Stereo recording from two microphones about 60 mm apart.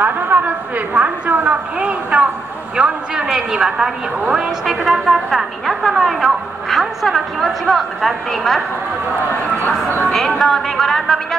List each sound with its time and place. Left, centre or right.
0.0 s a woman's voice: right; by 8.6 s centre
9.7 s speech: left
10.1 s a woman's voice: centre